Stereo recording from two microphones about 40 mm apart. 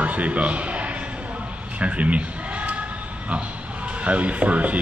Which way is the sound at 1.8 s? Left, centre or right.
Right.